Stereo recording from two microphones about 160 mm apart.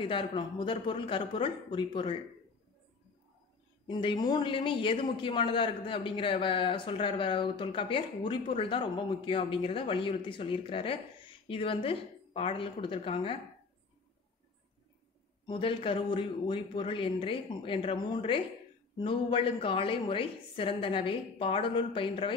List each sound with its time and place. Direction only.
0.0 s a man's voice: 30° left (ahead or behind)
3.8 s a man's voice: 30° left (ahead or behind)
15.4 s a man's voice: 35° left (ahead or behind)